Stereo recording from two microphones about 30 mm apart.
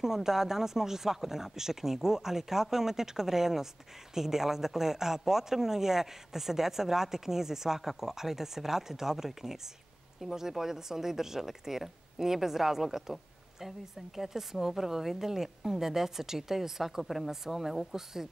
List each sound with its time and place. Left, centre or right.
0.0 s speech: centre